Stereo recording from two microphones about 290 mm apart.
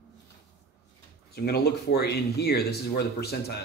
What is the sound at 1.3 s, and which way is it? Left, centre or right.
Speech, left.